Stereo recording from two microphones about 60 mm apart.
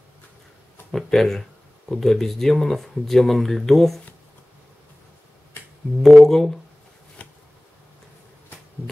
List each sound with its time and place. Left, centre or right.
0.9 s speech: centre
6.0 s speech: centre
7.2 s a sound: left